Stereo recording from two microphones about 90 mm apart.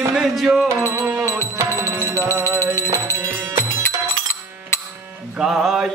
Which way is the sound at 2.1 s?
30° left (ahead or behind).